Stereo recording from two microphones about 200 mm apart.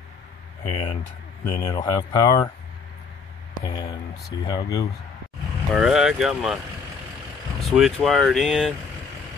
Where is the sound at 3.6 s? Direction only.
20° left (ahead or behind).